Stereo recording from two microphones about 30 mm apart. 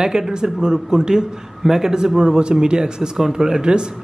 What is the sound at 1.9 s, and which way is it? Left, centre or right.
Speech, right.